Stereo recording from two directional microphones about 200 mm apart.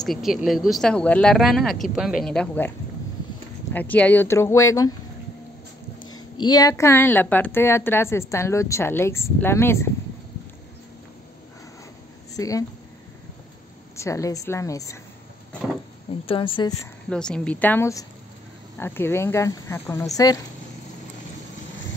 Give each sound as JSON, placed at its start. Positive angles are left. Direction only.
{"t": 0.0, "sound": "speech", "side_deg": 0}
{"t": 3.7, "sound": "a woman's voice", "side_deg": 10}
{"t": 6.0, "sound": "a sound", "side_deg": 90}
{"t": 6.4, "sound": "a woman's voice", "side_deg": 20}
{"t": 12.4, "sound": "a woman's voice", "side_deg": 15}
{"t": 13.9, "sound": "a woman's voice", "side_deg": 15}
{"t": 16.3, "sound": "a woman's voice", "side_deg": 25}
{"t": 17.1, "sound": "a woman's voice", "side_deg": 5}